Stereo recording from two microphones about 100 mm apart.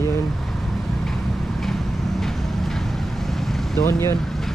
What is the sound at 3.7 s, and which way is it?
Speech, 30° left (ahead or behind).